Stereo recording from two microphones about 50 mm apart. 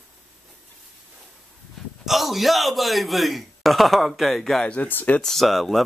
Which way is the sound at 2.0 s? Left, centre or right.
Centre.